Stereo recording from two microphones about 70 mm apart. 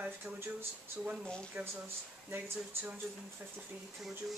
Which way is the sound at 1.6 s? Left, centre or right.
Right.